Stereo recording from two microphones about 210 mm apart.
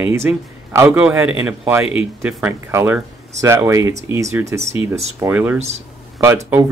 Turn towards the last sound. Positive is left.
turn(degrees=-10)  # may be behind; listen again after turning